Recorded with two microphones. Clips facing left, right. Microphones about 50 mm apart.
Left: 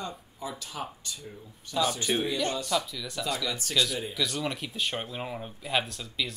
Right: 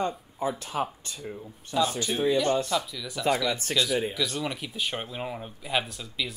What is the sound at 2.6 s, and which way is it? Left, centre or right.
Speech, centre.